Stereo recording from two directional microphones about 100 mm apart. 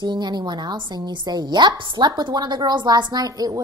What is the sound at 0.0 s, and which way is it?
A woman's voice, 45° right (ahead or behind).